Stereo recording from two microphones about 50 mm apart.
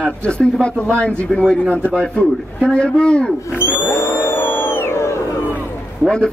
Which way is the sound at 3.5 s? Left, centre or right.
Left.